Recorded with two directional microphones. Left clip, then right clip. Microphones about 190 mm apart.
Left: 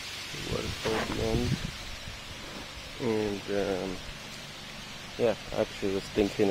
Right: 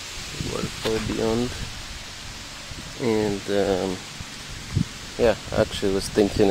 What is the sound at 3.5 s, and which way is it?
Speech, 40° right (ahead or behind).